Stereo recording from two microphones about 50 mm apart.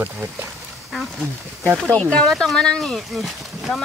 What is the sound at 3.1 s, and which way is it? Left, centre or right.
Speech, centre.